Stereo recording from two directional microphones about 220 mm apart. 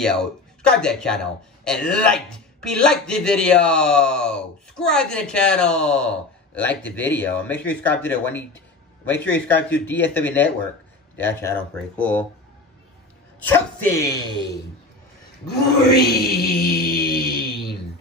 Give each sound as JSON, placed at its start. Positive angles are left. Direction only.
{"t": 0.0, "sound": "a man's voice", "side_deg": 5}
{"t": 13.9, "sound": "a man's voice", "side_deg": 15}
{"t": 15.9, "sound": "mantra", "side_deg": 45}